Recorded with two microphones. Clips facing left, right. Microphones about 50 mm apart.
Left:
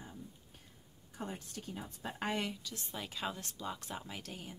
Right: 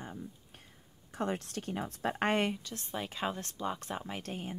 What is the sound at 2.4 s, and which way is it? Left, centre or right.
Speech, right.